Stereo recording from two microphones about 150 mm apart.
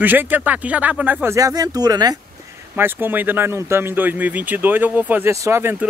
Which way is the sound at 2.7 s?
15° right (ahead or behind).